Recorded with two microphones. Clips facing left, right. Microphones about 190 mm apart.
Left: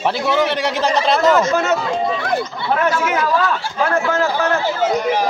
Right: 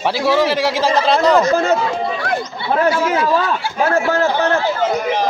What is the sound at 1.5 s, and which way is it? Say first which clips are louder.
Speech: right 2 dB; 30° right (ahead or behind).